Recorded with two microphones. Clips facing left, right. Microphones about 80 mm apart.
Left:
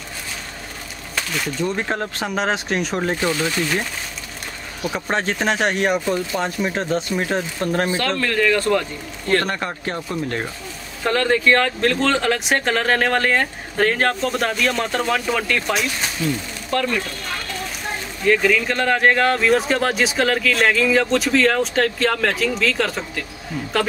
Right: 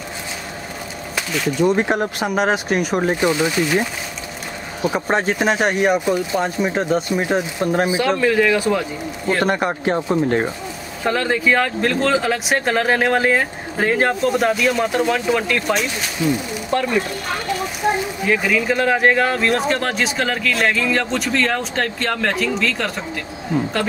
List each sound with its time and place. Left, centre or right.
1.6 s speech: centre
4.9 s speech: centre
11.1 s speech: centre
16.2 s speech: centre
18.2 s a man's voice: centre